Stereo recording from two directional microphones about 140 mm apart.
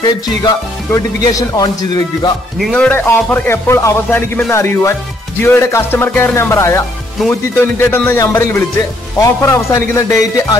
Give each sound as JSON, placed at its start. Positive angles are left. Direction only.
{"t": 0.9, "sound": "speech", "side_deg": 25}
{"t": 2.6, "sound": "speech", "side_deg": 10}